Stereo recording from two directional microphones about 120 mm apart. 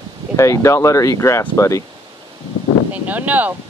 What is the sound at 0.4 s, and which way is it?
Speech, 25° left (ahead or behind).